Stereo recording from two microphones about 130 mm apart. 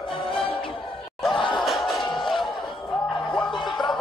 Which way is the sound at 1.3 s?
40° left (ahead or behind).